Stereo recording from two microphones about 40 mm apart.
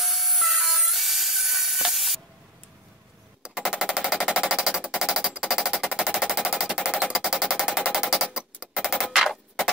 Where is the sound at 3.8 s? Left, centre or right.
Centre.